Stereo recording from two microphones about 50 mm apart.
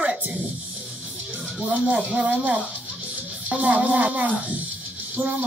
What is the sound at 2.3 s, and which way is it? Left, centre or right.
Speech, right.